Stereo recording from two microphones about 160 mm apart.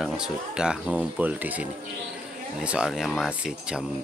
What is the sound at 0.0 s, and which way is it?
Speech, 5° right (ahead or behind).